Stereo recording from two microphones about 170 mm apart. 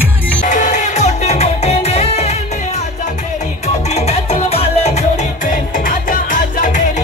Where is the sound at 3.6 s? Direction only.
40° left (ahead or behind).